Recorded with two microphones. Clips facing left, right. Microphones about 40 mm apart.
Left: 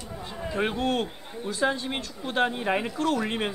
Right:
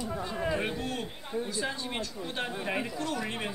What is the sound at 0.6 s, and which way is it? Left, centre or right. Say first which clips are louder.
A man's voice: left 7 dB; left.